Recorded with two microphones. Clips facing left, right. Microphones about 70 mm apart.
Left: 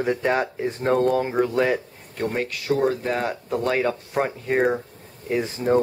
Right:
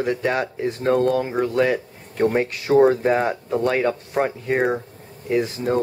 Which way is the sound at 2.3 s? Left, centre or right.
Right.